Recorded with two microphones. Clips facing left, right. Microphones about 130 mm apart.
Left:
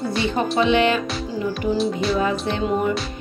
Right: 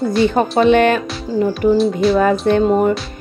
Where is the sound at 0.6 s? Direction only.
50° right (ahead or behind).